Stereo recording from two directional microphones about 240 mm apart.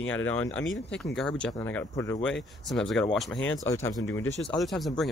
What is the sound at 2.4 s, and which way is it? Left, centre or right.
Speech, centre.